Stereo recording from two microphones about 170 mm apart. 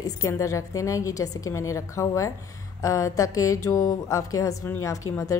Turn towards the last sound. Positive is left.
turn(degrees=20)  # may be behind; listen again after turning